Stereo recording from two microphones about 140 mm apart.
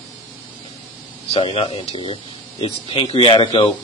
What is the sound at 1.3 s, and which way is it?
Speech, 40° left (ahead or behind).